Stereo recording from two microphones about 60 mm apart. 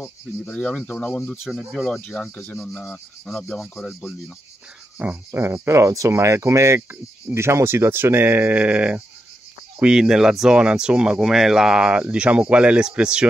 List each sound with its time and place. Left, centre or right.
0.5 s speech: left
1.3 s speech: centre
1.9 s speech: centre
3.3 s speech: centre
4.9 s cricket: right
5.4 s speech: right
8.5 s cricket: centre
9.8 s speech: centre